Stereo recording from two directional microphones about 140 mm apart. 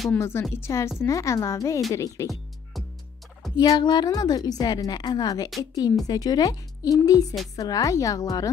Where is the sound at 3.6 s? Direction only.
30° left (ahead or behind).